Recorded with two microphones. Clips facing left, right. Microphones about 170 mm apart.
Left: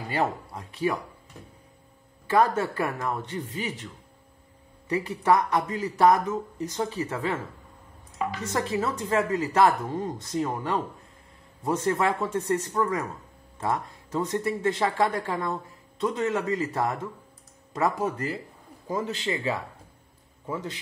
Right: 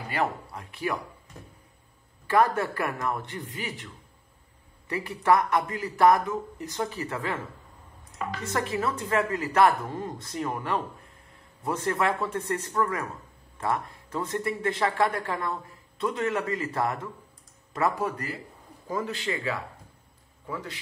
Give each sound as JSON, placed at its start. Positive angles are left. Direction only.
{"t": 0.1, "sound": "a man's voice", "side_deg": 25}
{"t": 2.2, "sound": "a man's voice", "side_deg": 25}
{"t": 4.8, "sound": "a man's voice", "side_deg": 20}
{"t": 8.5, "sound": "a man's voice", "side_deg": 20}